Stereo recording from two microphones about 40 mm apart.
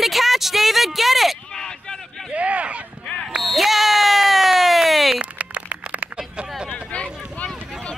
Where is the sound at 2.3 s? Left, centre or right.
Right.